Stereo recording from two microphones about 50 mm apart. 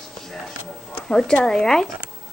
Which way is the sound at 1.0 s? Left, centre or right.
Centre.